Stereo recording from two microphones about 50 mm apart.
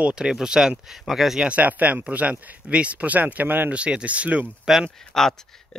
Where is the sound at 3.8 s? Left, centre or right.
Right.